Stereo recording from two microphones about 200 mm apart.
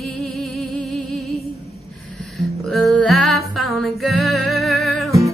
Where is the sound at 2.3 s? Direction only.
Centre (ahead or behind).